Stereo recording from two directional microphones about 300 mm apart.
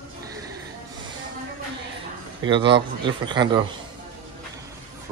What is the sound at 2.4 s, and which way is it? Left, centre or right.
Speech, centre.